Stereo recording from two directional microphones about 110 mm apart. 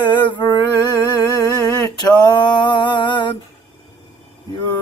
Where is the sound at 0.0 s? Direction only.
45° left (ahead or behind).